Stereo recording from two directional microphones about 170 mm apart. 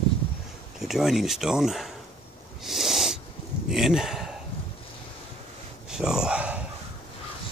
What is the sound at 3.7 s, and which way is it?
Speech, centre (ahead or behind).